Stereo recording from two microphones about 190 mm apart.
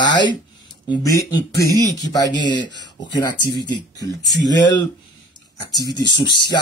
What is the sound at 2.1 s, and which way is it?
Speech, 20° left (ahead or behind).